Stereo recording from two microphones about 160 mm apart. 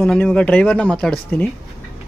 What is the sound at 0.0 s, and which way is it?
Speech, 5° left (ahead or behind).